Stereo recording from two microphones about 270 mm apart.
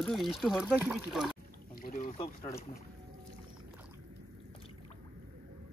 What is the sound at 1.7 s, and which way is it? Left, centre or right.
Pour, left.